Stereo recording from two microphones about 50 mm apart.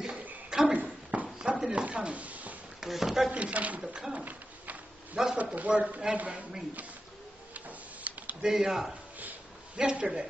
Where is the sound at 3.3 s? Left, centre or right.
Right.